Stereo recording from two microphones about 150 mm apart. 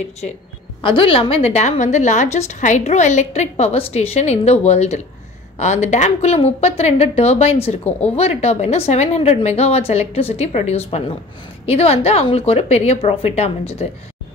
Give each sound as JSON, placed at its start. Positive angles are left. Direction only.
{"t": 0.8, "sound": "a woman's voice", "side_deg": 35}